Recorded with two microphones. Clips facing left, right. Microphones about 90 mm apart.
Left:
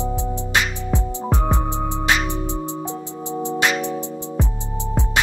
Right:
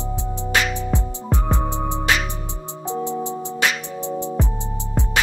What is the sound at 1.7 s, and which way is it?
Music, 15° right (ahead or behind).